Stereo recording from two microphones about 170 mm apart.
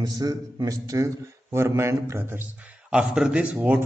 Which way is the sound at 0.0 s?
25° right (ahead or behind).